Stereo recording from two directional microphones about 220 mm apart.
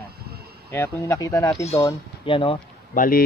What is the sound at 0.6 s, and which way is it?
Speech, 10° left (ahead or behind).